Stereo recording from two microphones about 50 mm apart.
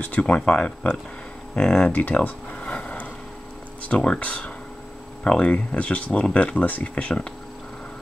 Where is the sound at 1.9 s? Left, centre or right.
Left.